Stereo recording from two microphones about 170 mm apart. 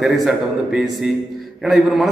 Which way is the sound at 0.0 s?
Centre (ahead or behind).